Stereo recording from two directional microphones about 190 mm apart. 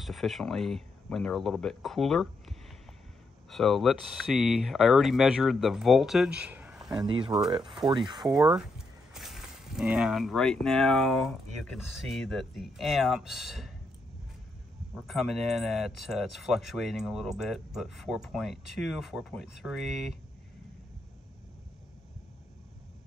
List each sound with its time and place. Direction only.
0.0 s speech: centre (ahead or behind)
7.0 s speech: 25° right (ahead or behind)
7.6 s speech: centre (ahead or behind)
15.0 s speech: centre (ahead or behind)